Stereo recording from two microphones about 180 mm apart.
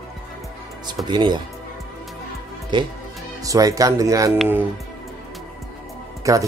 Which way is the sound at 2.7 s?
25° right (ahead or behind).